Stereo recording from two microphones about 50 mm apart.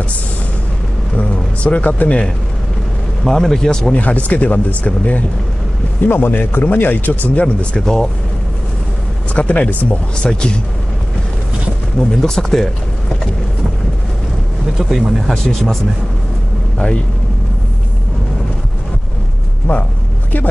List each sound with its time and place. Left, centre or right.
1.1 s a sound: left
3.3 s speech: centre
3.9 s speech: left
6.0 s speech: left
7.8 s speech: centre
9.3 s speech: left
10.1 s speech: centre
12.0 s speech: centre
14.8 s speech: centre
19.7 s speech: left